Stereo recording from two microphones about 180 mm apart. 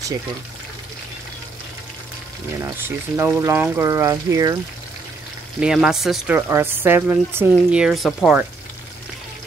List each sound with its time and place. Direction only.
2.6 s speech: 15° right (ahead or behind)
5.6 s speech: 5° right (ahead or behind)